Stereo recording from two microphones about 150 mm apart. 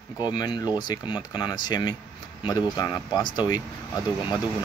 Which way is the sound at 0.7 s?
30° left (ahead or behind).